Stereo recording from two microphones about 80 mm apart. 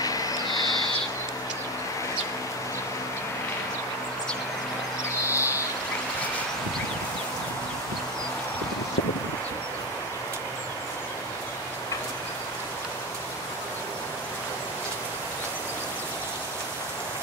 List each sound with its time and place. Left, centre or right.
0.0 s owl: left
5.2 s music: left